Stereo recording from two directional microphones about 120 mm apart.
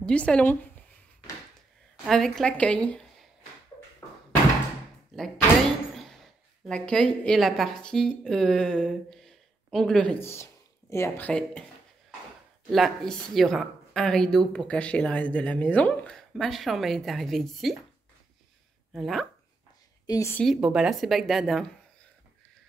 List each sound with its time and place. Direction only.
0.0 s a woman's voice: 10° left (ahead or behind)
2.0 s a woman's voice: 5° left (ahead or behind)
5.1 s door: centre (ahead or behind)
6.7 s a woman's voice: 5° left (ahead or behind)
10.1 s speech: 20° left (ahead or behind)
12.7 s a woman's voice: centre (ahead or behind)
18.9 s a woman's voice: centre (ahead or behind)
20.1 s a woman's voice: 25° left (ahead or behind)
20.4 s a woman's voice: 5° right (ahead or behind)